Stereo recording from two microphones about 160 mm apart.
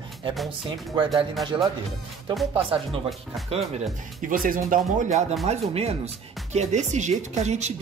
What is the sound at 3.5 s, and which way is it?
Speech, 40° right (ahead or behind).